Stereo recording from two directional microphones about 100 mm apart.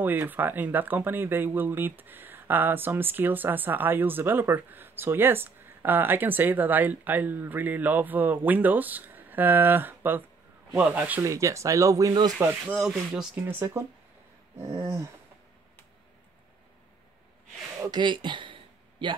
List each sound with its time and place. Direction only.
0.0 s speech: 20° right (ahead or behind)
11.2 s speech: 30° right (ahead or behind)
12.4 s speech: 15° right (ahead or behind)
12.8 s speech: 5° right (ahead or behind)
13.5 s speech: 20° right (ahead or behind)
17.8 s speech: 50° right (ahead or behind)